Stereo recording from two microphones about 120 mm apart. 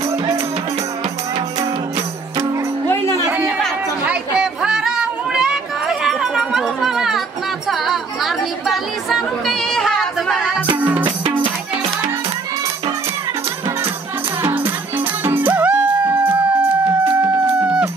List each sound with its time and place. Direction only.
3.3 s chatter: 10° right (ahead or behind)
4.0 s a sound: 10° right (ahead or behind)
10.8 s music: 15° right (ahead or behind)
11.1 s music: 45° right (ahead or behind)
14.4 s music: 15° right (ahead or behind)